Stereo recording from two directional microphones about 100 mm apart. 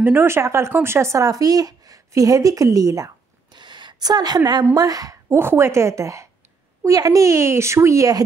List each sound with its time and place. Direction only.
0.0 s speech: 20° right (ahead or behind)
3.5 s a sound: 50° right (ahead or behind)
4.7 s a woman's voice: 40° right (ahead or behind)